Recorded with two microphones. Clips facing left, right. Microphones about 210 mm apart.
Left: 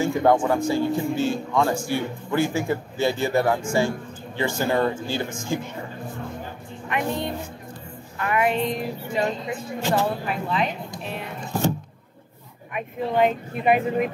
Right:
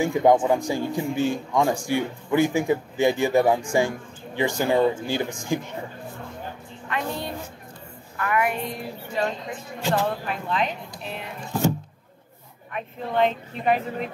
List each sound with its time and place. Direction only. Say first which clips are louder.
0.0 s speech: right 1 dB; 15° right (ahead or behind)
6.9 s speech: left 3 dB; 20° left (ahead or behind)
10.2 s a woman's voice: left 1 dB; 5° left (ahead or behind)
12.7 s speech: left 2 dB; 10° left (ahead or behind)